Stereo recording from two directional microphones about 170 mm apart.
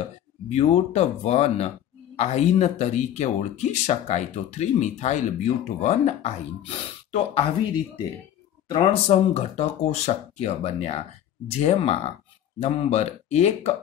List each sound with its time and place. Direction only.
0.5 s speech: 40° left (ahead or behind)
8.6 s speech: 30° left (ahead or behind)